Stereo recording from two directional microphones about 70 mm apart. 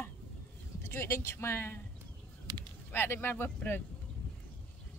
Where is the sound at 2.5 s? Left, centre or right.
Right.